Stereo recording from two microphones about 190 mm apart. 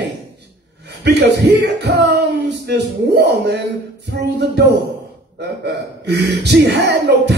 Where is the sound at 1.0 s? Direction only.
65° right (ahead or behind).